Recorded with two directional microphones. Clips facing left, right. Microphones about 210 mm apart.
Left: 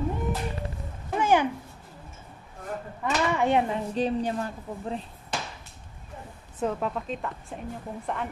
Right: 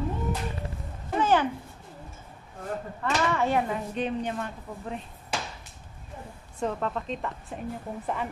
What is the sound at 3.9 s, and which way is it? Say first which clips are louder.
A woman's voice: left 4 dB; 35° left (ahead or behind).